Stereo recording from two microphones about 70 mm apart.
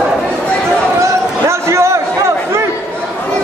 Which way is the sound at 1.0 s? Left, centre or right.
Right.